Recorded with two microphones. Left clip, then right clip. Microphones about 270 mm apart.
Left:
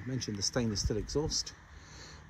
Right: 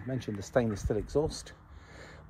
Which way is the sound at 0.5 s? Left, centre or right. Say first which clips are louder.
Right 9 dB; centre.